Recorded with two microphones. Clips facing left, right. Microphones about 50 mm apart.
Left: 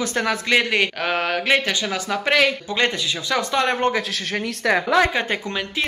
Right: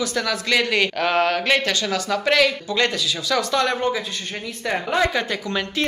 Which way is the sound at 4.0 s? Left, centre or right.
Left.